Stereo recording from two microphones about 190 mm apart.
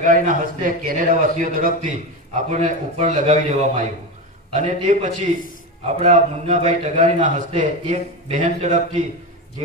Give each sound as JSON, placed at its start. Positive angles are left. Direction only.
{"t": 0.0, "sound": "a man's voice", "side_deg": -45}